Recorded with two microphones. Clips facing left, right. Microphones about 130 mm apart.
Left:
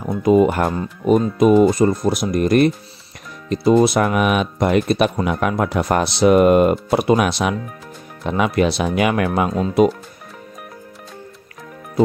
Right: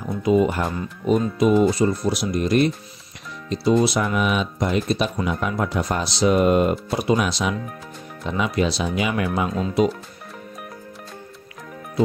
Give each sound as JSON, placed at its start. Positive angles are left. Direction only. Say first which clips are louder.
{"t": 0.1, "sound": "speech", "louder": "left 5 dB", "side_deg": 50}